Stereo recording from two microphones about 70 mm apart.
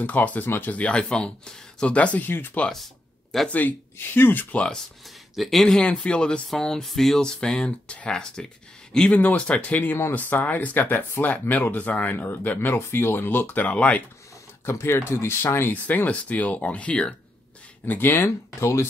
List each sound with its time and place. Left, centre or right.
0.0 s speech: left
2.7 s a sound: centre
3.4 s speech: left
5.3 s speech: centre
9.1 s speech: left
14.7 s speech: left
15.7 s speech: left
17.8 s speech: left